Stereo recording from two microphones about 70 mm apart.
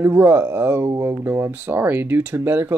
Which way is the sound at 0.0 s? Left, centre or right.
Right.